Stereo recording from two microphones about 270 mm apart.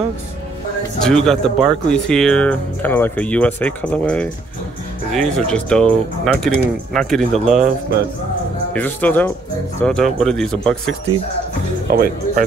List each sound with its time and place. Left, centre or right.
1.0 s speech: centre
8.7 s speech: centre
11.9 s speech: right